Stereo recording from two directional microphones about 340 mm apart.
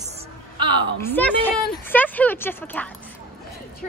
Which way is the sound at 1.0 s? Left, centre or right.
Centre.